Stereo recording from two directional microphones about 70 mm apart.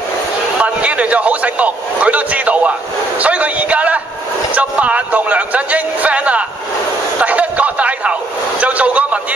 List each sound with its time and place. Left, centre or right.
0.6 s a man's voice: centre